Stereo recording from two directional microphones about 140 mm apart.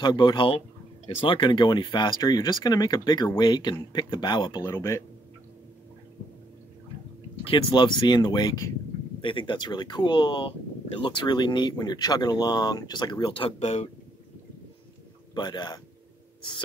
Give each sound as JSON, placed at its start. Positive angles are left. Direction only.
{"t": 0.0, "sound": "speech", "side_deg": 30}
{"t": 4.6, "sound": "speech", "side_deg": 20}
{"t": 7.4, "sound": "speech", "side_deg": 35}
{"t": 15.3, "sound": "speech", "side_deg": 30}